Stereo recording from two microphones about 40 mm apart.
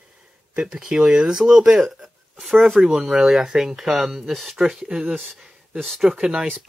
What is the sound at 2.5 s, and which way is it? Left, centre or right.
Speech, centre.